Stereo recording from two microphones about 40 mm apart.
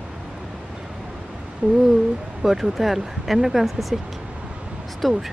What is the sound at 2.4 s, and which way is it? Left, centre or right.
Speech, centre.